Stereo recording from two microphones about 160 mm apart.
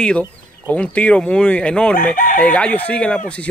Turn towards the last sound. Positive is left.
turn(degrees=10)  # may be behind; listen again after turning